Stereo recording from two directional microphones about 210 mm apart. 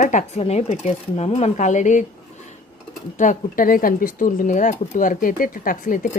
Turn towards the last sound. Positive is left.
turn(degrees=40)  # may be behind; listen again after turning